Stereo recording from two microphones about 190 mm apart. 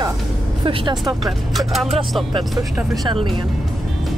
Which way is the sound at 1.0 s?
Centre (ahead or behind).